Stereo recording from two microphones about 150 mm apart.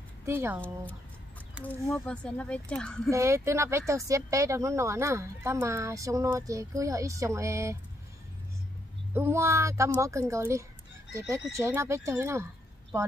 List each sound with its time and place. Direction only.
0.2 s speech: 15° right (ahead or behind)
1.9 s speech: 5° left (ahead or behind)
3.1 s speech: 20° right (ahead or behind)
9.1 s speech: 15° right (ahead or behind)